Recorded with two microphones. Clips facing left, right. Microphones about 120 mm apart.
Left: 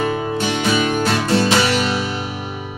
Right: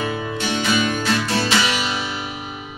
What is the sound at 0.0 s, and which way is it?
Music, 40° left (ahead or behind).